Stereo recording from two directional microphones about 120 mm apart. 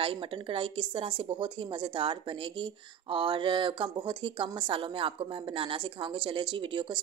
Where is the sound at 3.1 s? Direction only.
45° right (ahead or behind).